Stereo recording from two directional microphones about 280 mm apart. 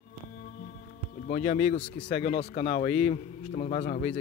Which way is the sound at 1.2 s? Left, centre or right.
Left.